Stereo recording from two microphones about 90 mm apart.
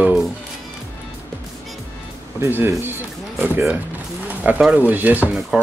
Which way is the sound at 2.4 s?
30° right (ahead or behind).